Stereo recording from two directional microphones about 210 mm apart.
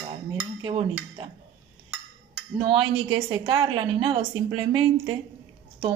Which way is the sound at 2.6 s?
25° right (ahead or behind).